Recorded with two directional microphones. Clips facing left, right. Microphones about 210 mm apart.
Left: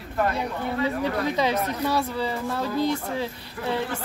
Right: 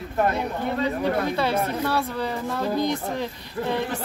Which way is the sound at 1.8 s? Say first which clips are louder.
Even; 10° left (ahead or behind).